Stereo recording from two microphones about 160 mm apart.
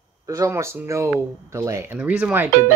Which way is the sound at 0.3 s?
20° right (ahead or behind).